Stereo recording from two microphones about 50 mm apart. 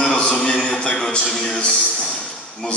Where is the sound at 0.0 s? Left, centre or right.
Centre.